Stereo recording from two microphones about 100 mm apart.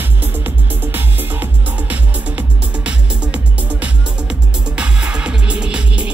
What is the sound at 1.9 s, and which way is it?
Music, 15° right (ahead or behind).